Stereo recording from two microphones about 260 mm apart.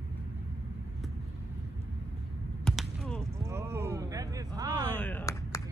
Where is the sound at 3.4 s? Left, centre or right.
Centre.